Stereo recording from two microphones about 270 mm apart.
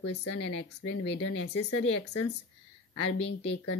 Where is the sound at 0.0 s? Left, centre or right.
Left.